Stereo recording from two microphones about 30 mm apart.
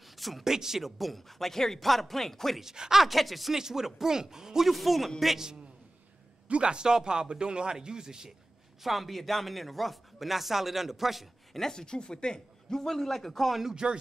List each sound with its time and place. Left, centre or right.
0.4 s speech: centre
2.6 s speech: centre
3.0 s speech: centre
3.5 s speech: centre
4.6 s speech: centre
6.5 s speech: right
8.8 s speech: centre
11.5 s speech: centre
12.6 s a man's voice: centre
13.8 s speech: right